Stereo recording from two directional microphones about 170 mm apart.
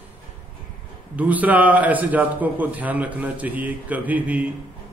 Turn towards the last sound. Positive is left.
turn(degrees=-10)  # may be behind; listen again after turning